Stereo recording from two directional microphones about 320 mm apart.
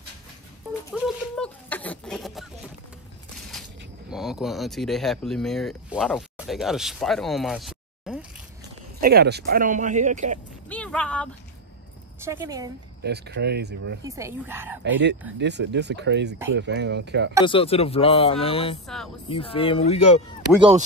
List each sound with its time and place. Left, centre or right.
0.9 s a sound: centre
4.1 s speech: centre
9.0 s speech: right
10.7 s speech: centre
12.2 s speech: centre
13.0 s speech: right
14.0 s speech: centre
14.8 s speech: right
17.5 s speech: centre